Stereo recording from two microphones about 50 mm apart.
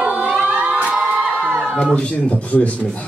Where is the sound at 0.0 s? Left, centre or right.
Right.